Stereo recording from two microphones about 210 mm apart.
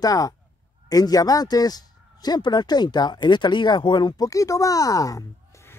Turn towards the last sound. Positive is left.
turn(degrees=15)  # may be behind; listen again after turning